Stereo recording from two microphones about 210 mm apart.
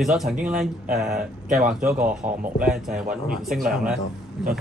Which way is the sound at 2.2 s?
40° right (ahead or behind).